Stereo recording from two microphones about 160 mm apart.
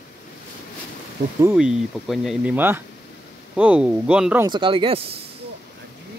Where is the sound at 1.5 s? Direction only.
5° right (ahead or behind).